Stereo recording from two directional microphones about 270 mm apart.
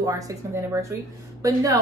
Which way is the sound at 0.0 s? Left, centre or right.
Centre.